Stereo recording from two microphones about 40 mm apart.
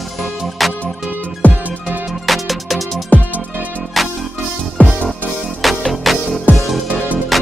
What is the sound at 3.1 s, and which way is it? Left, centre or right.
Music, left.